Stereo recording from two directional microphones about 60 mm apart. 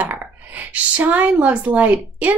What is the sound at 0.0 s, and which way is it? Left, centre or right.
Speech, right.